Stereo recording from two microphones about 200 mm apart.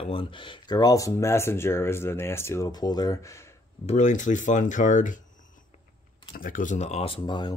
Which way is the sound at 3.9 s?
35° left (ahead or behind).